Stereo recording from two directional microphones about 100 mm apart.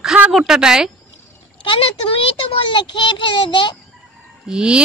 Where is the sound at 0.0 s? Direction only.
5° right (ahead or behind).